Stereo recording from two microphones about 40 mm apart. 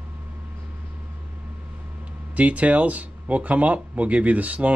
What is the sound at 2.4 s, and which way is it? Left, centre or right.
Speech, right.